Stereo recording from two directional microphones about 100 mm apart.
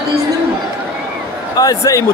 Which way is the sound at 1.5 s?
35° left (ahead or behind).